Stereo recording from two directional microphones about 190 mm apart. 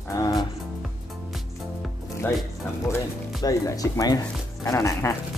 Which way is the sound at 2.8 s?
20° left (ahead or behind).